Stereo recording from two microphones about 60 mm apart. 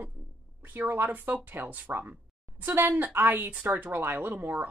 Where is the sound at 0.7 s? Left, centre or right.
Right.